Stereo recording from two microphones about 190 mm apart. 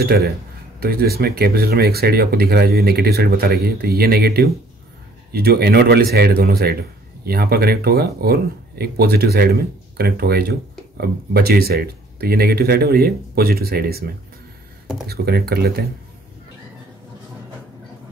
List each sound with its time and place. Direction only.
0.0 s speech: 55° right (ahead or behind)